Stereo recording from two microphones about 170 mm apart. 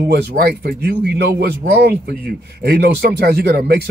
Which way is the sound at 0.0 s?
65° right (ahead or behind).